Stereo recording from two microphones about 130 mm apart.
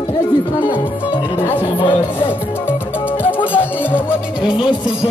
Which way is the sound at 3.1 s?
15° left (ahead or behind).